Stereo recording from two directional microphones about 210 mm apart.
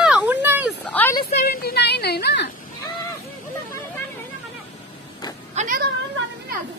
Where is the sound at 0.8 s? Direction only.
10° left (ahead or behind).